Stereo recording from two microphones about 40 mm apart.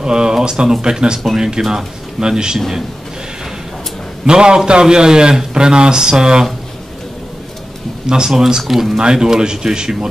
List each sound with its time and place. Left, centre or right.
0.0 s a man's voice: centre
4.3 s a man's voice: right
8.3 s speech: centre
8.9 s a man's voice: centre